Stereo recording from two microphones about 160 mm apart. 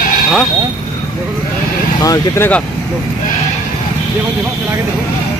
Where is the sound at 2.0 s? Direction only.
20° left (ahead or behind).